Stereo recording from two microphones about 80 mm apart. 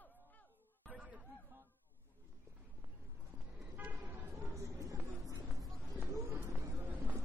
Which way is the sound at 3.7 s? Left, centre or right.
Right.